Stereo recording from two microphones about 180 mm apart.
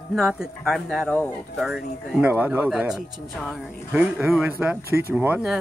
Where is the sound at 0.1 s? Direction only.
Centre (ahead or behind).